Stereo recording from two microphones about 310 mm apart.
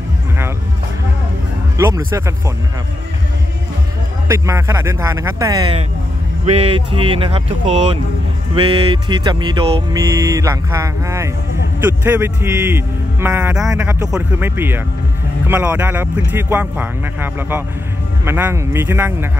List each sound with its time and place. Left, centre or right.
1.8 s speech: centre
4.3 s speech: centre